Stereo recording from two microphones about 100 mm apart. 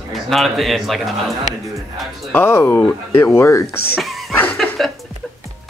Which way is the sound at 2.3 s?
25° left (ahead or behind).